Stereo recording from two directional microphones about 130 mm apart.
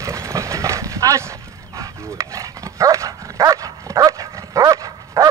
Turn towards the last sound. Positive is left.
turn(degrees=-25)  # may be behind; listen again after turning